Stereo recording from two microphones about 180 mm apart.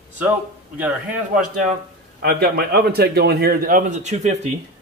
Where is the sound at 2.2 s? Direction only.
60° right (ahead or behind).